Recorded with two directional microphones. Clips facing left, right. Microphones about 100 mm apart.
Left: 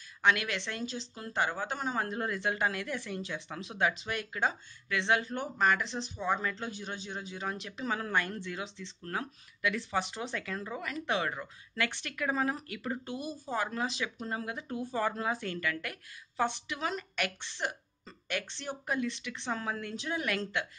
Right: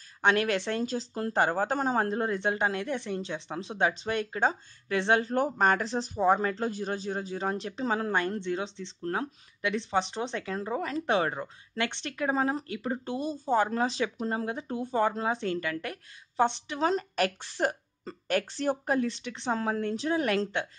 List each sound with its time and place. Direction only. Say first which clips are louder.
0.2 s speech: right 4 dB; 35° right (ahead or behind)